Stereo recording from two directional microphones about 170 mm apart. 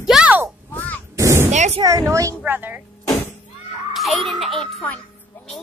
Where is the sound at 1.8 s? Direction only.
20° right (ahead or behind).